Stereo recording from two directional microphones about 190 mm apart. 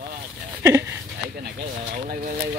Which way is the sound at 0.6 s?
15° right (ahead or behind).